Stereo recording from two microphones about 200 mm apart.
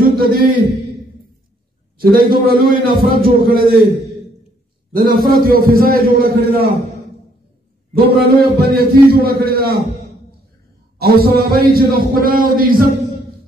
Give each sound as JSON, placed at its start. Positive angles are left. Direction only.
{"t": 0.2, "sound": "a man's voice", "side_deg": -50}
{"t": 2.0, "sound": "a man's voice", "side_deg": -45}
{"t": 4.9, "sound": "a man's voice", "side_deg": -45}
{"t": 8.2, "sound": "a man's voice", "side_deg": -50}
{"t": 11.0, "sound": "a man's voice", "side_deg": -50}